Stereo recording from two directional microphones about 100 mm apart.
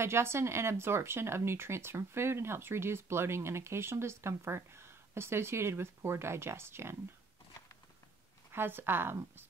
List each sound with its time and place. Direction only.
0.0 s speech: 25° right (ahead or behind)
8.5 s a woman's voice: 20° right (ahead or behind)